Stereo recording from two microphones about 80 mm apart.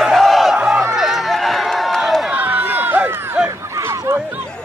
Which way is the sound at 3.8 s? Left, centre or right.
Right.